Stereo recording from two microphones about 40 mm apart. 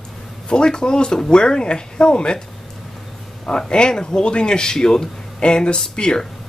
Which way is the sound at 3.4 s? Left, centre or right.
Left.